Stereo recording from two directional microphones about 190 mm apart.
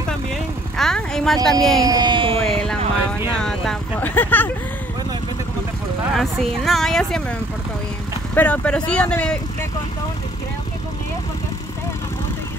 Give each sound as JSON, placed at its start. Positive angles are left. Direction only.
{"t": 0.7, "sound": "a woman's voice", "side_deg": 5}
{"t": 1.8, "sound": "speech", "side_deg": -20}
{"t": 2.4, "sound": "a sound", "side_deg": 5}
{"t": 3.1, "sound": "speech", "side_deg": 5}
{"t": 6.1, "sound": "a woman's voice", "side_deg": 0}
{"t": 8.4, "sound": "speech", "side_deg": 5}